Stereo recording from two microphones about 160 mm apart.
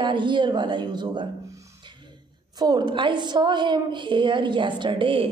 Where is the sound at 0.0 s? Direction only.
30° right (ahead or behind).